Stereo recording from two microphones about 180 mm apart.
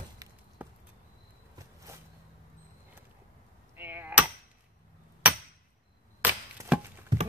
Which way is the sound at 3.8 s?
10° right (ahead or behind).